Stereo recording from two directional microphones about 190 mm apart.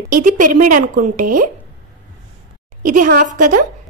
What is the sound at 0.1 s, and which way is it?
Speech, 45° right (ahead or behind).